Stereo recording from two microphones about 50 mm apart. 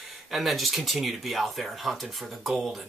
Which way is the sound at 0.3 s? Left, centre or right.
Centre.